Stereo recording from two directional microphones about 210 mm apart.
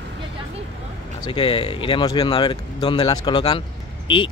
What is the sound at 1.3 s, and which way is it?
Speech, 25° left (ahead or behind).